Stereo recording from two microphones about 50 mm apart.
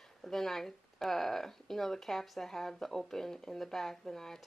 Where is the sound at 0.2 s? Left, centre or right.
Centre.